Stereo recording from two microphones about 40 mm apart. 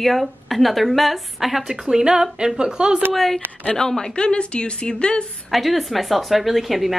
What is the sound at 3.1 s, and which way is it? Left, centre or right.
Speech, centre.